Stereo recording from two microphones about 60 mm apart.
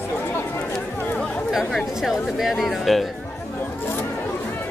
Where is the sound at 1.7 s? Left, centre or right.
Centre.